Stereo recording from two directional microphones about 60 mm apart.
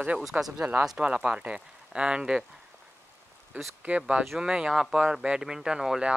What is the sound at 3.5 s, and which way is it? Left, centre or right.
Speech, right.